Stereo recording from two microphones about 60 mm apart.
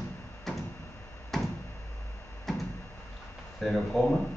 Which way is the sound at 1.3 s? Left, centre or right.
Centre.